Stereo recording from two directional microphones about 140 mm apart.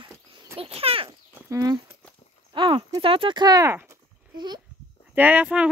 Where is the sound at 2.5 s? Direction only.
35° right (ahead or behind).